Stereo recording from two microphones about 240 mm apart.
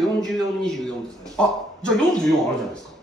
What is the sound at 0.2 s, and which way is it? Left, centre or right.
A man's voice, centre.